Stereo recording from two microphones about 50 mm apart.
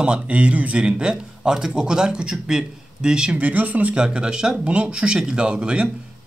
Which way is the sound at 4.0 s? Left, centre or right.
Centre.